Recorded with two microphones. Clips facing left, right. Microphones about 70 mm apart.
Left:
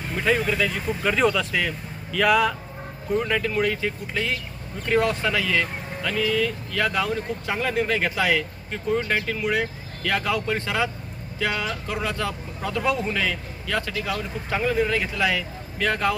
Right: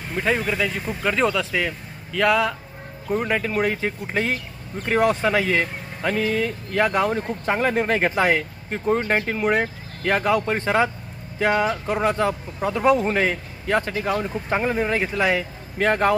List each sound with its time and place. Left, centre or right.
0.1 s speech: centre
3.1 s speech: right